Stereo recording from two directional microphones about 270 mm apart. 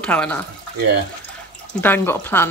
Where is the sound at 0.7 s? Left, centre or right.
Right.